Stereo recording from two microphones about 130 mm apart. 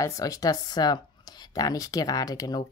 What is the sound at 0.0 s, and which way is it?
Speech, 25° left (ahead or behind).